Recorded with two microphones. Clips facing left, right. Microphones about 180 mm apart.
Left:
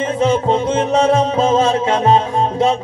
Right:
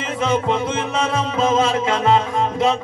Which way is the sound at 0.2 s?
35° left (ahead or behind).